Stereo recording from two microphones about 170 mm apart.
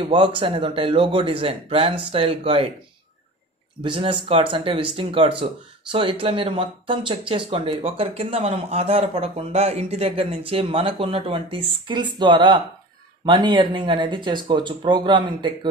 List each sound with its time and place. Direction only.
0.0 s speech: 30° right (ahead or behind)
3.8 s speech: 30° right (ahead or behind)